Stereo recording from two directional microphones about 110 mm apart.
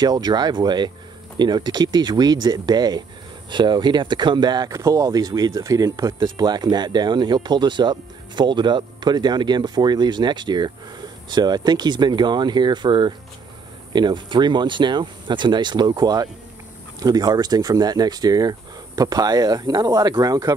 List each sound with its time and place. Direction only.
0.0 s speech: 40° right (ahead or behind)